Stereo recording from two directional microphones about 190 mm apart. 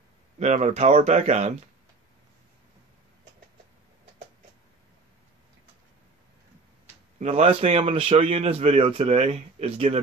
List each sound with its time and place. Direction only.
0.4 s a man's voice: 35° right (ahead or behind)
7.2 s a man's voice: 35° right (ahead or behind)